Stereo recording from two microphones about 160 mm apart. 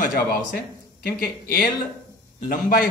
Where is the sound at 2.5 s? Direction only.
65° left (ahead or behind).